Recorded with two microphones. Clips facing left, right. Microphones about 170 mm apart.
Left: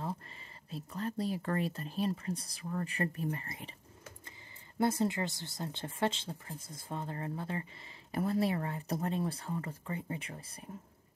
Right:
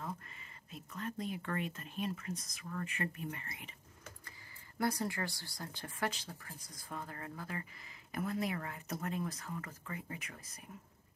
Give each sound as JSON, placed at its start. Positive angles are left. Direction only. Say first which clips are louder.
{"t": 0.7, "sound": "speech", "louder": "left 5 dB", "side_deg": 35}
{"t": 4.7, "sound": "speech", "louder": "left 5 dB", "side_deg": 25}